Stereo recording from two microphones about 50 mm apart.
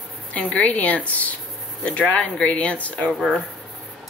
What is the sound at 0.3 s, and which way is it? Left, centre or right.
Speech, left.